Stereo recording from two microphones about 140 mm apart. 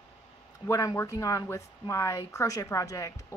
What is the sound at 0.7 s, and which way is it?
Speech, 20° left (ahead or behind).